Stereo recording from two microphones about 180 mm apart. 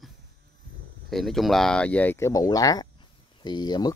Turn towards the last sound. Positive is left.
turn(degrees=25)  # may be behind; listen again after turning